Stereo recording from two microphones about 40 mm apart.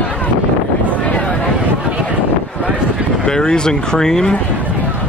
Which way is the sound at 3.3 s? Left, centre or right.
Centre.